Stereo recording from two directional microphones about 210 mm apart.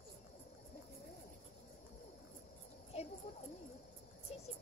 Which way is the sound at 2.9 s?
30° left (ahead or behind).